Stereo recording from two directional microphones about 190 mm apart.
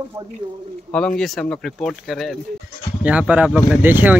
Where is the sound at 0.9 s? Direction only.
5° left (ahead or behind).